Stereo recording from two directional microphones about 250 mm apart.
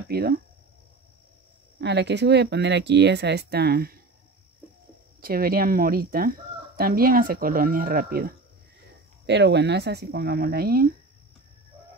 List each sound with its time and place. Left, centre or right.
0.1 s speech: right
1.8 s speech: right
5.2 s speech: right